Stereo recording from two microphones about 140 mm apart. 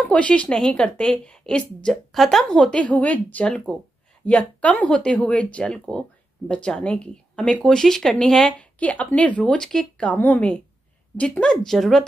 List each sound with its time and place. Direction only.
0.0 s speech: 10° left (ahead or behind)